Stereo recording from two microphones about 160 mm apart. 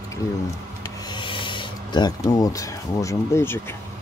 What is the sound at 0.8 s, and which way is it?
Rub, 30° left (ahead or behind).